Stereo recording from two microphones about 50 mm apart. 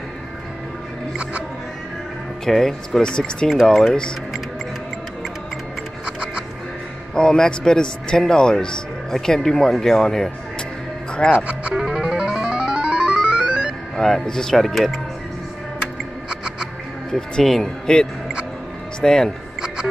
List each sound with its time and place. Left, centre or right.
2.4 s speech: centre
3.0 s speech: centre
6.0 s music: centre
7.2 s speech: centre
11.3 s speech: right
11.7 s music: centre
13.9 s speech: centre
16.3 s music: centre
17.1 s speech: centre